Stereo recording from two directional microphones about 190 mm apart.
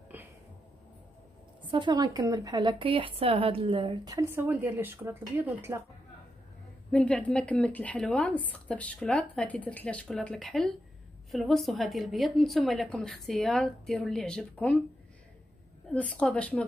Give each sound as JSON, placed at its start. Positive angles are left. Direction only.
{"t": 0.1, "sound": "a sound", "side_deg": -10}
{"t": 1.7, "sound": "a woman's voice", "side_deg": -25}
{"t": 6.9, "sound": "speech", "side_deg": 5}
{"t": 15.9, "sound": "a woman's voice", "side_deg": 5}